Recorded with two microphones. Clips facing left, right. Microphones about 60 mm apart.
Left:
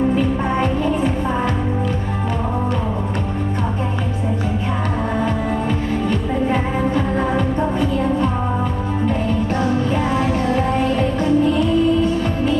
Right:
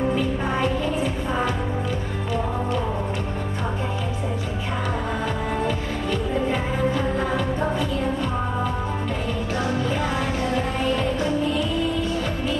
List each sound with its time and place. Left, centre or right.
11.1 s music: left